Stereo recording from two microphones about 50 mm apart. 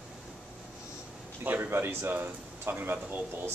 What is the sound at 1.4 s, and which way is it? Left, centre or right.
A man's voice, right.